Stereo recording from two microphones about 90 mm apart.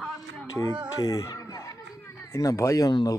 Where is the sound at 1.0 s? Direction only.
45° left (ahead or behind).